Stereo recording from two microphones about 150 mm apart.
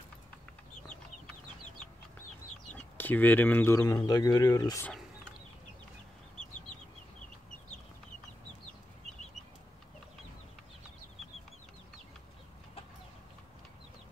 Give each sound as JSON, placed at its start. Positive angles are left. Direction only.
{"t": 2.7, "sound": "speech", "side_deg": 10}